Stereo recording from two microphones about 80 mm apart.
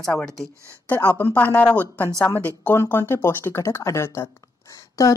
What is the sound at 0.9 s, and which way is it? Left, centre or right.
Speech, left.